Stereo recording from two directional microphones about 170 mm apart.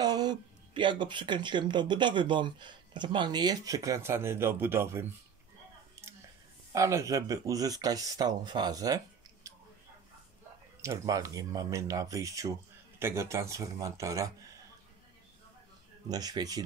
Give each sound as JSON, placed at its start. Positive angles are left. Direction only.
{"t": 0.0, "sound": "speech", "side_deg": -25}
{"t": 6.7, "sound": "speech", "side_deg": -15}
{"t": 10.8, "sound": "speech", "side_deg": -20}
{"t": 16.1, "sound": "speech", "side_deg": -20}